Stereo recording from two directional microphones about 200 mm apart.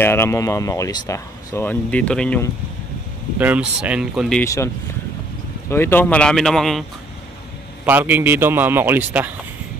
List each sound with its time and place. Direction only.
0.0 s speech: 10° left (ahead or behind)
3.3 s speech: 5° right (ahead or behind)
4.4 s speech: 15° left (ahead or behind)
5.7 s speech: 10° left (ahead or behind)
7.8 s a man's voice: 10° right (ahead or behind)